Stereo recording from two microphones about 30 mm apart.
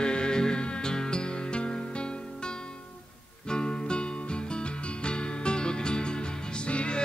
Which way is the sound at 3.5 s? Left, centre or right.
Left.